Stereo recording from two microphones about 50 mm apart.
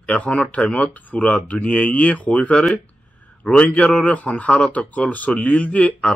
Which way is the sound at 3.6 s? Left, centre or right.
Left.